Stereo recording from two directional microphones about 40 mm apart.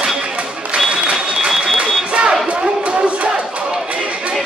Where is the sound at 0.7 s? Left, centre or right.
Right.